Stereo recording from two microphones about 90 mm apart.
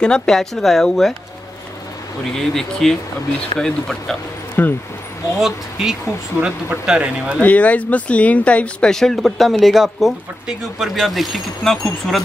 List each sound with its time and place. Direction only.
0.0 s speech: 5° left (ahead or behind)
2.3 s speech: 5° left (ahead or behind)
4.6 s speech: 20° left (ahead or behind)
5.4 s speech: 5° right (ahead or behind)
7.4 s speech: 15° left (ahead or behind)